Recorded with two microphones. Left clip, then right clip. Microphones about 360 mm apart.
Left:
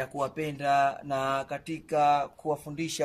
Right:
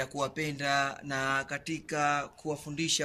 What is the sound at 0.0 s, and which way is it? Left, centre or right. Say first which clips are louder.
Speech: left 2 dB; centre.